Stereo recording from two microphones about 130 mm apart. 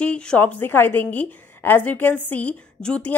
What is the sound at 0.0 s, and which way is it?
A woman's voice, 10° left (ahead or behind).